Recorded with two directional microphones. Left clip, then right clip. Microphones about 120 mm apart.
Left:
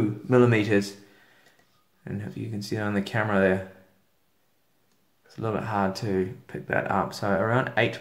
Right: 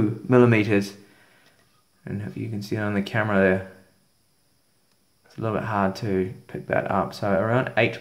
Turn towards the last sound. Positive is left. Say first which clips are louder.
# right 2 dB
turn(degrees=-20)  # may be behind; listen again after turning